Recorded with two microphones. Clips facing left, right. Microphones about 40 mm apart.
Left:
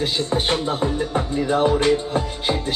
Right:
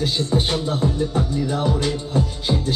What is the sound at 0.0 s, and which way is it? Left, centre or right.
Speech, left.